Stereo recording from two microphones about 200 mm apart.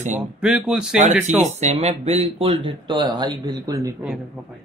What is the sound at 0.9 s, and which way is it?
Speech, 35° right (ahead or behind).